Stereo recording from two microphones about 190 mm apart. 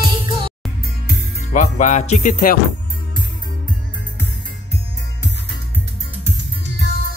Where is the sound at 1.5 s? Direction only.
40° left (ahead or behind).